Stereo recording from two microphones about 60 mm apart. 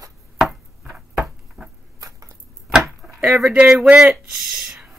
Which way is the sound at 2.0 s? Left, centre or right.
Right.